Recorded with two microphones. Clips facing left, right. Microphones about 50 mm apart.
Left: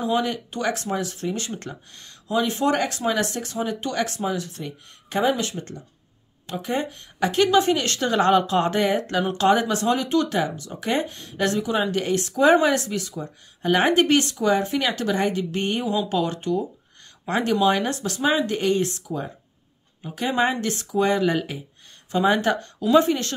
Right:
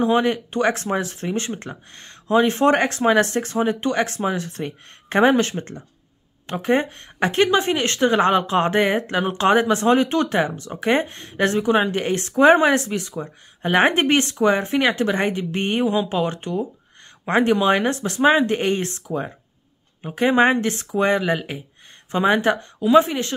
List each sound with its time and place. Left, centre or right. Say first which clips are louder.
0.0 s speech: right 5 dB; right
21.2 s speech: even; centre